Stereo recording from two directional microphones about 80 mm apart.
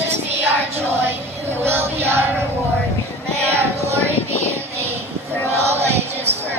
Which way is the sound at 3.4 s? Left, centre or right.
Right.